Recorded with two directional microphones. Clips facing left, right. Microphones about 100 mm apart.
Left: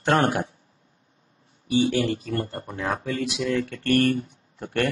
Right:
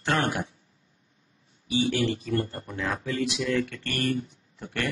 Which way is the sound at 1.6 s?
45° left (ahead or behind).